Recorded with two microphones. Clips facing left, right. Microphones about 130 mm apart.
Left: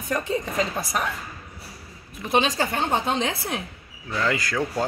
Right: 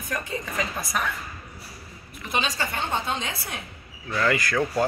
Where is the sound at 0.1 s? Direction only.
30° left (ahead or behind).